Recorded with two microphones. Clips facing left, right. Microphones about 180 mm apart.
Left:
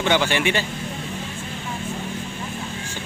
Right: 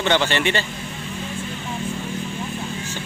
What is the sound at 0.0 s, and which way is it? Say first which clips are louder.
Speech: even; 10° left (ahead or behind).